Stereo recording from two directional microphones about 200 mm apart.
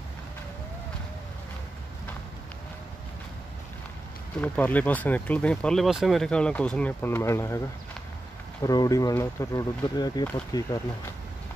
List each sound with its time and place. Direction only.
4.4 s speech: 10° left (ahead or behind)
8.6 s speech: 20° left (ahead or behind)